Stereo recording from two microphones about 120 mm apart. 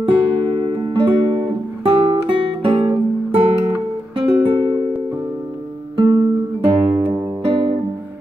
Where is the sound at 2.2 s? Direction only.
50° right (ahead or behind).